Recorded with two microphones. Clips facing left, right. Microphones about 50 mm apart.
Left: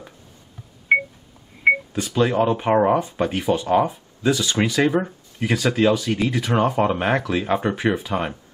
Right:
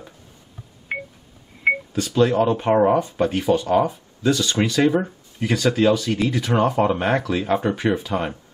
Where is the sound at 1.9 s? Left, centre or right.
Centre.